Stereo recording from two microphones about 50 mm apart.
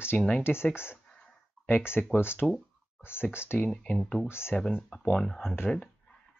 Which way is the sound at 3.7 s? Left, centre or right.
Centre.